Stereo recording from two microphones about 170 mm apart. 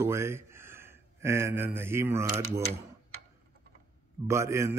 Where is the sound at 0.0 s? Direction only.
15° right (ahead or behind).